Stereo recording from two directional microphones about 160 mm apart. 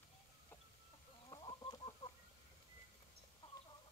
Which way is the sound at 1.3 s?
30° left (ahead or behind).